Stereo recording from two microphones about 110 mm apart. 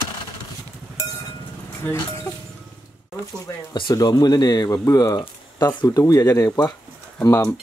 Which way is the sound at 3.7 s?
40° left (ahead or behind).